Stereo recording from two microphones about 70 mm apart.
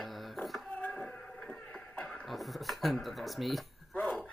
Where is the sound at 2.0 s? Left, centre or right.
Centre.